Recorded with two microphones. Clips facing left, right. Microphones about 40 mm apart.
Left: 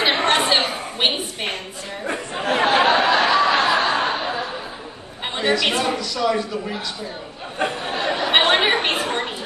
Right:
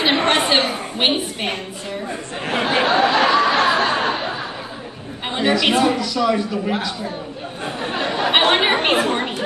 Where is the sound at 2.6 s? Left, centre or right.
Left.